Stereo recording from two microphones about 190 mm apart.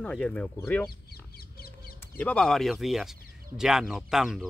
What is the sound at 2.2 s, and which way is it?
Speech, 5° left (ahead or behind).